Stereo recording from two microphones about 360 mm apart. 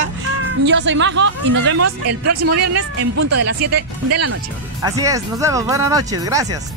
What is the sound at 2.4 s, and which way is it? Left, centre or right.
Speech, right.